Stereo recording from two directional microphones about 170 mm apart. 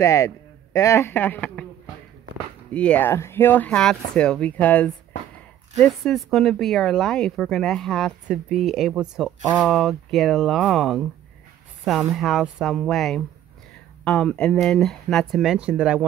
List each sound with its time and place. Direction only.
0.0 s a man's voice: 20° left (ahead or behind)
2.7 s speech: 10° left (ahead or behind)